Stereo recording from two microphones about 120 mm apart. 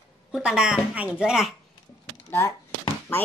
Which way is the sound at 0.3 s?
5° right (ahead or behind).